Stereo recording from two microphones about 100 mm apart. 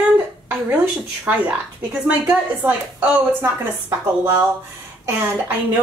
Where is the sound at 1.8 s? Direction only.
15° right (ahead or behind).